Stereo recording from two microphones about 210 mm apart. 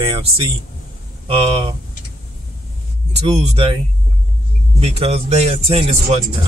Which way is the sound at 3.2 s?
30° right (ahead or behind).